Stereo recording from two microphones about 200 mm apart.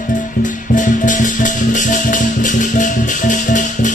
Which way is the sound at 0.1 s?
40° left (ahead or behind).